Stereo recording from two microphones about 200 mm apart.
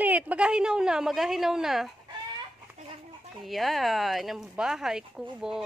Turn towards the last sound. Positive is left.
turn(degrees=0)  # may be behind; listen again after turning